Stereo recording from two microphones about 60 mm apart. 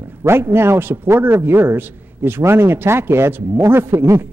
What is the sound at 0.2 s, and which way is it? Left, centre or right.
A man's voice, right.